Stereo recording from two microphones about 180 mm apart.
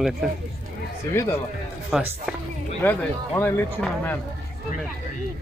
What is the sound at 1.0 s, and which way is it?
Speech, 15° left (ahead or behind).